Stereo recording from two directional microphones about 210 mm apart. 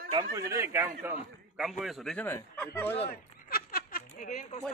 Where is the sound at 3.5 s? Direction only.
45° left (ahead or behind).